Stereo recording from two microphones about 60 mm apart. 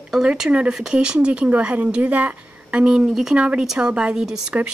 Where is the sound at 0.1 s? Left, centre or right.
Centre.